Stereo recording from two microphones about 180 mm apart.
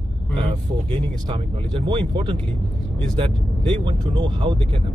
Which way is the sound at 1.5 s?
30° right (ahead or behind).